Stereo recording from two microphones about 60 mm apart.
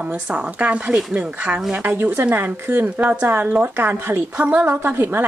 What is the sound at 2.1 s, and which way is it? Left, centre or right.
A woman's voice, right.